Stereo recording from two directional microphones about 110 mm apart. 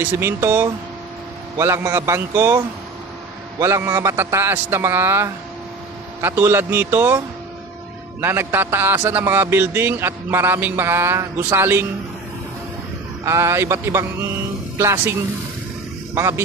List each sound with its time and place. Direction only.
0.0 s a man's voice: 20° right (ahead or behind)
13.2 s a man's voice: 25° right (ahead or behind)
16.2 s a man's voice: 25° right (ahead or behind)